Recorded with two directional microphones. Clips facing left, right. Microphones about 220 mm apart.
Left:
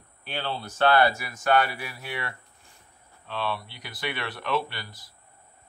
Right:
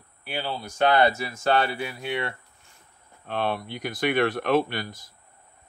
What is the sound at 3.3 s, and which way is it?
Speech, 50° right (ahead or behind).